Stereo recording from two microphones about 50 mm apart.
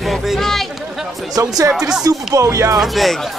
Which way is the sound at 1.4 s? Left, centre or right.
Right.